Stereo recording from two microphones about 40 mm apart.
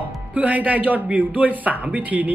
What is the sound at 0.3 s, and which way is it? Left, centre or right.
Speech, right.